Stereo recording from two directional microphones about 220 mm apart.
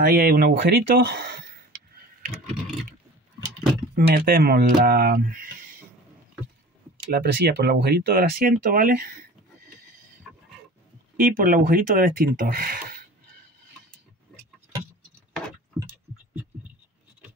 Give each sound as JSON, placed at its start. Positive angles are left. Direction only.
{"t": 0.0, "sound": "speech", "side_deg": -45}
{"t": 3.9, "sound": "speech", "side_deg": -40}
{"t": 7.1, "sound": "speech", "side_deg": -45}
{"t": 11.1, "sound": "speech", "side_deg": -40}